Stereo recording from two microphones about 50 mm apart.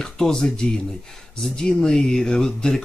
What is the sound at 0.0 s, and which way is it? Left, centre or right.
Speech, centre.